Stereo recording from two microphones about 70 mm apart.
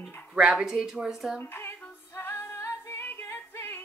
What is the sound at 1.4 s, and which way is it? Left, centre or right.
Speech, left.